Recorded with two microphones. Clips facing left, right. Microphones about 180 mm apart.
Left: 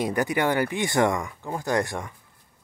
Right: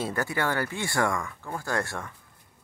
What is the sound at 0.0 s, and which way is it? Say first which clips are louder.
Speech: left 5 dB; 15° left (ahead or behind).